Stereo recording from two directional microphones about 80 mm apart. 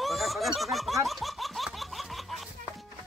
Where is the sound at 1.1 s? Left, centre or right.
Centre.